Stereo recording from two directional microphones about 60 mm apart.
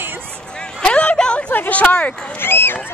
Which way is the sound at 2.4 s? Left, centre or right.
Left.